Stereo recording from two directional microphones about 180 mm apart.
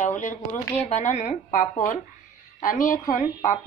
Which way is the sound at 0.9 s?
40° left (ahead or behind).